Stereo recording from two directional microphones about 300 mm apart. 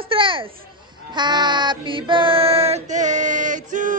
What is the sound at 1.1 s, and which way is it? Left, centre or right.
Child singing, centre.